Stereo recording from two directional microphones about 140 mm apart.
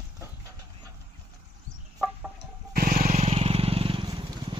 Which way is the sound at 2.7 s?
85° right.